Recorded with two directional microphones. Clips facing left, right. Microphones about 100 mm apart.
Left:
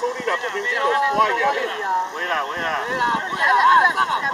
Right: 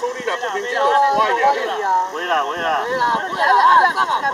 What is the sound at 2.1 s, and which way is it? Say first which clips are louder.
Speech: right 4 dB; 40° right (ahead or behind).